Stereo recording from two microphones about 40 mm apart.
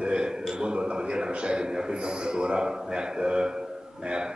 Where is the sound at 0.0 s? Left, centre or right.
Right.